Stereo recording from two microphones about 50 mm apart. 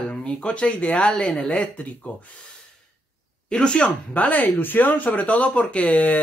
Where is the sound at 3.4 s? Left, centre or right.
Centre.